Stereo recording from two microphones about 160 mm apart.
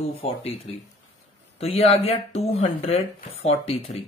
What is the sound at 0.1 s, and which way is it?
Speech, 35° left (ahead or behind).